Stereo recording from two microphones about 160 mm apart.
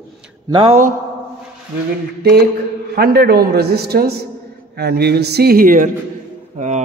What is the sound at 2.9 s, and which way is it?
A man's voice, 85° right.